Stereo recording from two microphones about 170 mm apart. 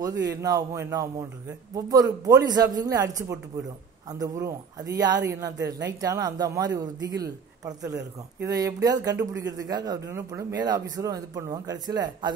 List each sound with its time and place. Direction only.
0.3 s speech: 20° right (ahead or behind)